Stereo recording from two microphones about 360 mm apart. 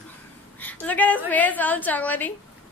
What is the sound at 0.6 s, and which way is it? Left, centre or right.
A woman's voice, centre.